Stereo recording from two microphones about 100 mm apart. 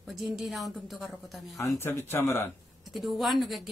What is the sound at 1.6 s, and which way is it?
Speech, 25° left (ahead or behind).